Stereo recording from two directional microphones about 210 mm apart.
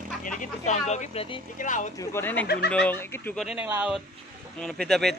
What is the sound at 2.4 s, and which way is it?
Speech, 50° left (ahead or behind).